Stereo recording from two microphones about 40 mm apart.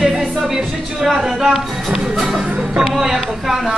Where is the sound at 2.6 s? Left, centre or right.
Right.